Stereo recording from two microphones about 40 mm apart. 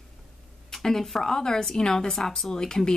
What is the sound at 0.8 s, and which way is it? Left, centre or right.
A woman's voice, centre.